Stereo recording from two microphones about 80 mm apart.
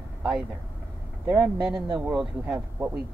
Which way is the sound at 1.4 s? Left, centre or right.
Centre.